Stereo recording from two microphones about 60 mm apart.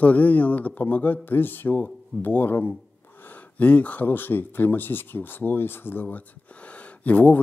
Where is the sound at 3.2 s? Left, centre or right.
Left.